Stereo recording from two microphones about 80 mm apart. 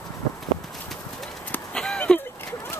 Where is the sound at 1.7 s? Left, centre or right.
Centre.